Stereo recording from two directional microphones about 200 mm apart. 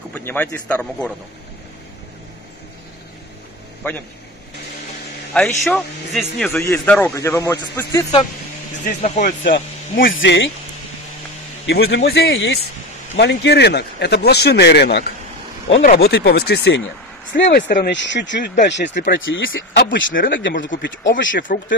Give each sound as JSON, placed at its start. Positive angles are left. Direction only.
{"t": 0.1, "sound": "speech", "side_deg": 10}
{"t": 5.4, "sound": "a man's voice", "side_deg": 5}
{"t": 9.0, "sound": "speech", "side_deg": 30}
{"t": 10.1, "sound": "speech", "side_deg": 65}
{"t": 11.6, "sound": "speech", "side_deg": 55}